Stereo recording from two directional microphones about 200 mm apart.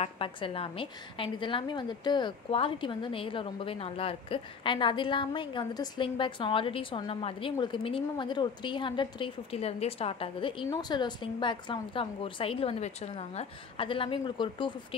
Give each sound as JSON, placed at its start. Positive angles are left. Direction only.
{"t": 0.0, "sound": "a woman's voice", "side_deg": 25}